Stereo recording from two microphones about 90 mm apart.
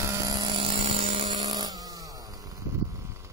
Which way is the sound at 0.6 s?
90° right.